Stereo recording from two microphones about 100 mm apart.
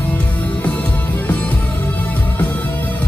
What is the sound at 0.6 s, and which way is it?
Music, 15° left (ahead or behind).